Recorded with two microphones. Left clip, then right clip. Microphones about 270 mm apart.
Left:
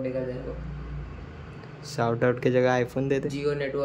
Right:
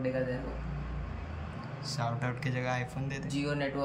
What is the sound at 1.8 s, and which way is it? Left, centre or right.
Speech, centre.